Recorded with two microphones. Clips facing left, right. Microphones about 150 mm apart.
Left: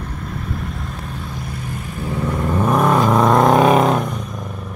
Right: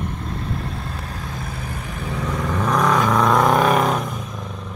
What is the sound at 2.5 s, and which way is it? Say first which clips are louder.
Vehicle: left 3 dB; 25° left (ahead or behind).